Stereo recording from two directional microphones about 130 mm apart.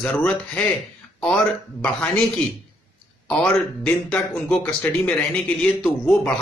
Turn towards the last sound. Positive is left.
turn(degrees=10)  # may be behind; listen again after turning